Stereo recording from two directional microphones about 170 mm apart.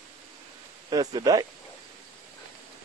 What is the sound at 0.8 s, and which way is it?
Speech, 20° right (ahead or behind).